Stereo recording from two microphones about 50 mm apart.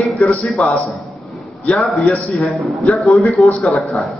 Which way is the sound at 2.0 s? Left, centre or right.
Left.